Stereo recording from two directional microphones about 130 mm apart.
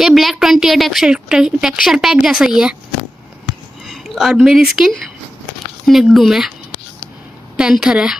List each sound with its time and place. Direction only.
0.0 s a woman's voice: centre (ahead or behind)
3.8 s a woman's voice: centre (ahead or behind)
7.5 s a woman's voice: 5° right (ahead or behind)